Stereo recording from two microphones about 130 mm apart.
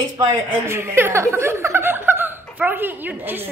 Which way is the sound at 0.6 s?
20° right (ahead or behind).